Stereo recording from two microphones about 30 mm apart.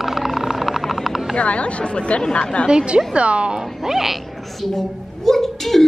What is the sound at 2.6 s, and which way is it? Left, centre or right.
Speech, right.